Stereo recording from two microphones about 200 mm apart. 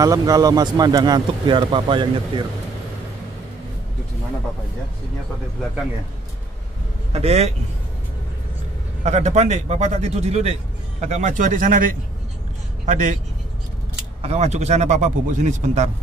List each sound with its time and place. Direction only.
0.0 s speech: 15° right (ahead or behind)
7.1 s a man's voice: 30° right (ahead or behind)
9.0 s a man's voice: 35° right (ahead or behind)
12.8 s a man's voice: 40° right (ahead or behind)
14.2 s a man's voice: 35° right (ahead or behind)